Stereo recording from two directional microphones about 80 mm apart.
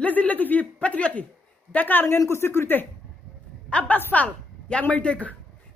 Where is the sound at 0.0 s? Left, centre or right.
Centre.